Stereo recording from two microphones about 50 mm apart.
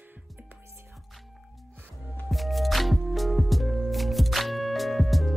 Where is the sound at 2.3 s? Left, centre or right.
Centre.